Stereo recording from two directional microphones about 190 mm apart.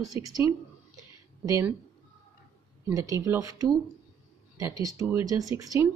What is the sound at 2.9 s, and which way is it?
Speech, 15° right (ahead or behind).